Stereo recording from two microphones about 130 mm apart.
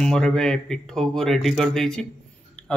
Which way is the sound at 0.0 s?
5° left (ahead or behind).